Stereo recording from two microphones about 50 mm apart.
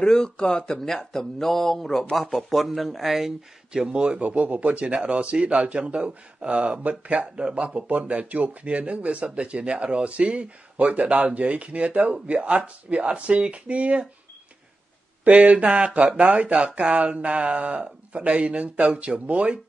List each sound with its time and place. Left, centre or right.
0.0 s speech: centre
0.7 s speech: centre
3.7 s speech: centre
15.2 s speech: right